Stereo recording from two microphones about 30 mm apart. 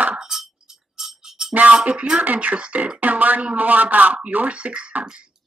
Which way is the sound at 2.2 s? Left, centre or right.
Right.